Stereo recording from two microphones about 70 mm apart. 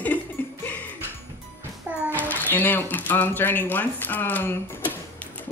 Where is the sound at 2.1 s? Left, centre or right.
Right.